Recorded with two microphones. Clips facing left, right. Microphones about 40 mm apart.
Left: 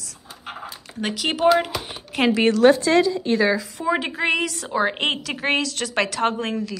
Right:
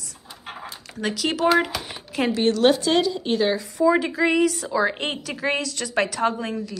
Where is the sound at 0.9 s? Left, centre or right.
Left.